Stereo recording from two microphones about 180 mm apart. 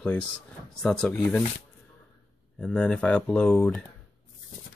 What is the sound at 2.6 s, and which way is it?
Speech, 5° left (ahead or behind).